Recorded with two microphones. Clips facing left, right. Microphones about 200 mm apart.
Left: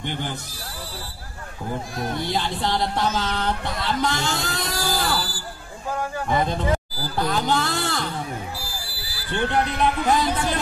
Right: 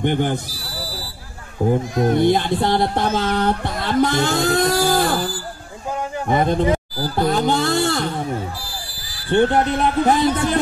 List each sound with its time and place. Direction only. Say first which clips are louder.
0.0 s music: right 10 dB; 55° right (ahead or behind)
1.6 s music: right 11 dB; 45° right (ahead or behind)
9.5 s music: right 4 dB; 50° right (ahead or behind)